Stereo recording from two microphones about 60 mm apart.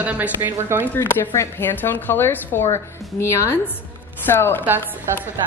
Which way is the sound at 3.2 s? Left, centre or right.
Left.